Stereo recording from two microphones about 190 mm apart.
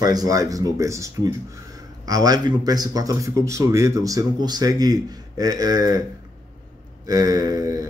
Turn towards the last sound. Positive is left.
turn(degrees=-20)  # may be behind; listen again after turning